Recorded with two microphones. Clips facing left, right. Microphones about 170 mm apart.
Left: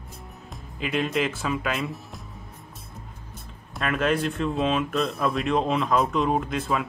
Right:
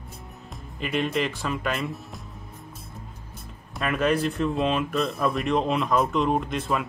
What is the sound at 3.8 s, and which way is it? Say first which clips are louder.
Speech: right 1 dB; centre (ahead or behind).